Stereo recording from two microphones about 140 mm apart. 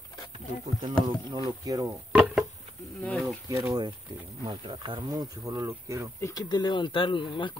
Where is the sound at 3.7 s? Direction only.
30° right (ahead or behind).